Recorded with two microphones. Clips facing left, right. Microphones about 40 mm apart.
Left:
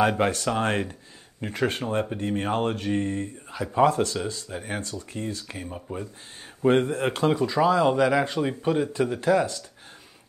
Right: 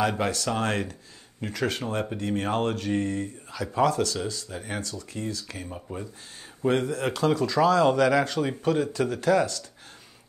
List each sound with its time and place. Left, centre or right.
0.2 s speech: left
3.9 s speech: left
4.5 s speech: left
4.8 s speech: left
5.7 s speech: centre
6.7 s speech: left